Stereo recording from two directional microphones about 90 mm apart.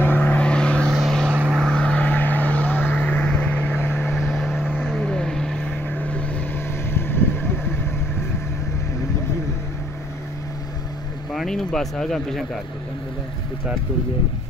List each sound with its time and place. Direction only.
0.0 s vehicle: 20° left (ahead or behind)
4.1 s vehicle: centre (ahead or behind)
6.9 s vehicle: 25° left (ahead or behind)
11.3 s speech: 5° left (ahead or behind)